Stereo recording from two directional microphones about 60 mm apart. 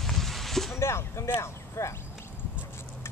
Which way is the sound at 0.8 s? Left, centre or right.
Left.